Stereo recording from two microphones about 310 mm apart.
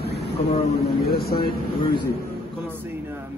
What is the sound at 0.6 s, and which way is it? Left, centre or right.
Speech, left.